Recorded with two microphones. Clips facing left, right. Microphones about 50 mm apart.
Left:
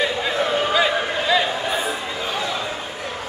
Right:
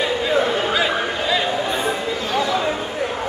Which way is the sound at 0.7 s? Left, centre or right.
Centre.